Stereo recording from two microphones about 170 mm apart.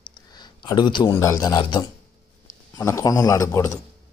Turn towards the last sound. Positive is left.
turn(degrees=20)  # may be behind; listen again after turning